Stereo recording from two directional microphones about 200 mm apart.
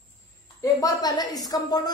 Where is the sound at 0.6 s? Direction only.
15° left (ahead or behind).